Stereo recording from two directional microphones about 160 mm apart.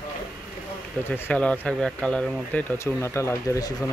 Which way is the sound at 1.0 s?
10° left (ahead or behind).